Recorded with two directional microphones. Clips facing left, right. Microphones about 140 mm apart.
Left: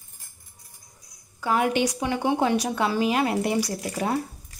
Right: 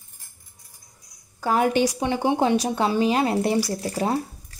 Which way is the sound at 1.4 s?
40° right (ahead or behind).